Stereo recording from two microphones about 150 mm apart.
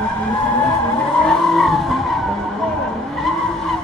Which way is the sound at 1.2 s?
Centre (ahead or behind).